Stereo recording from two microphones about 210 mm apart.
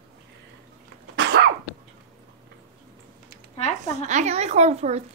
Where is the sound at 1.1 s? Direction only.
50° right (ahead or behind).